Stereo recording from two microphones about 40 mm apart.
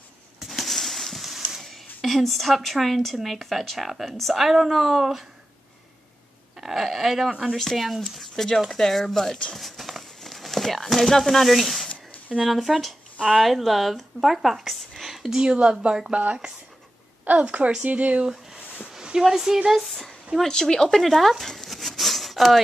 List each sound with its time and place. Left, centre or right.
0.4 s a sound: centre
1.6 s a woman's voice: centre
6.6 s a woman's voice: centre
7.2 s speech: centre
7.5 s a woman's voice: centre
9.5 s clip-clop: centre
12.4 s a woman's voice: centre
15.3 s speech: right
17.4 s speech: right
19.1 s a woman's voice: centre
19.9 s a sound: centre
20.4 s a woman's voice: centre
21.6 s a sound: centre